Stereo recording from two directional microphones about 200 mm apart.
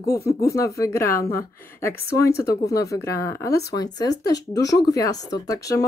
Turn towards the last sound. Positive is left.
turn(degrees=15)  # may be behind; listen again after turning